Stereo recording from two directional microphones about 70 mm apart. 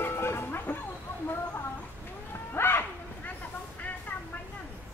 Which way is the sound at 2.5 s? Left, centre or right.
Left.